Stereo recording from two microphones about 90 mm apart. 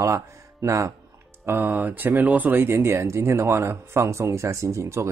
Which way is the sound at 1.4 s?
25° right (ahead or behind).